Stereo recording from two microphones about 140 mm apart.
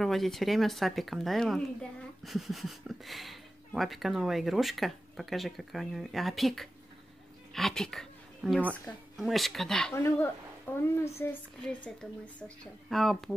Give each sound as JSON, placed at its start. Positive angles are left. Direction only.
{"t": 0.0, "sound": "speech", "side_deg": 0}
{"t": 10.8, "sound": "speech", "side_deg": 20}
{"t": 11.6, "sound": "speech", "side_deg": 5}